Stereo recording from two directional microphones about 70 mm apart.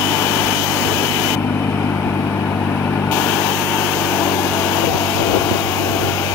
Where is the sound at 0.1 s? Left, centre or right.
Left.